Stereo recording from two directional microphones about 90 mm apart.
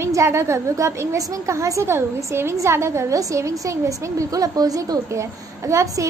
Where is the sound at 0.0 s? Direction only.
30° right (ahead or behind).